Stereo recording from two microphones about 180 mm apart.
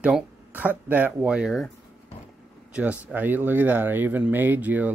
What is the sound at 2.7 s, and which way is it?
Speech, 10° right (ahead or behind).